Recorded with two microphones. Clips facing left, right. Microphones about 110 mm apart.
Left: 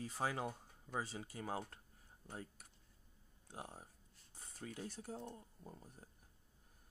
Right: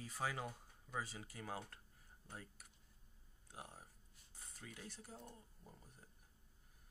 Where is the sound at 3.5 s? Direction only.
30° left (ahead or behind).